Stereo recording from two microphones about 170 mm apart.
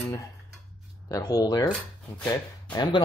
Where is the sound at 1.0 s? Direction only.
20° left (ahead or behind).